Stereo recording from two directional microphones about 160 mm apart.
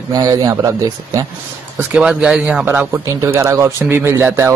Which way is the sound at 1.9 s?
5° right (ahead or behind).